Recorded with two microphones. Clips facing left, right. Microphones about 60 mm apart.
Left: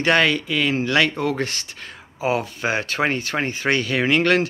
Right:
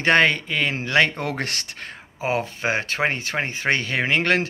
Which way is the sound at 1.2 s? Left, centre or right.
Right.